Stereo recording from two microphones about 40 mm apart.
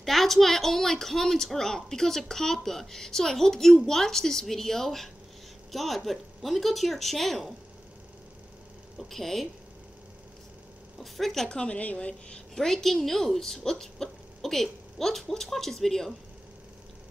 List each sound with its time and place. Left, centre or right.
0.0 s a woman's voice: centre
8.9 s speech: centre
11.0 s speech: centre
11.4 s speech: left
11.8 s speech: left
12.5 s a woman's voice: centre